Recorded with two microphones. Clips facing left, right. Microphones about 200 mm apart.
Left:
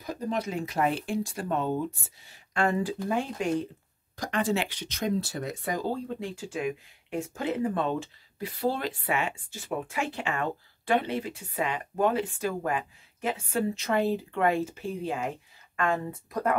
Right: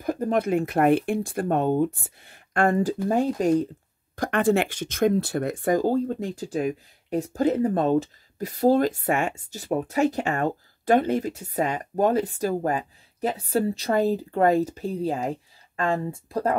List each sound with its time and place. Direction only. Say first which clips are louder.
0.0 s speech: right 7 dB; 55° right (ahead or behind)
4.1 s speech: right 7 dB; 55° right (ahead or behind); by 16.5 s 30° right (ahead or behind)